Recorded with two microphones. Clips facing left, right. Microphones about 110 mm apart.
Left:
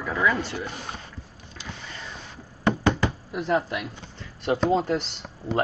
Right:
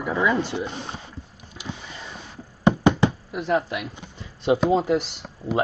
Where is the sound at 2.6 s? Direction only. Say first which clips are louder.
Right 4 dB; 20° right (ahead or behind).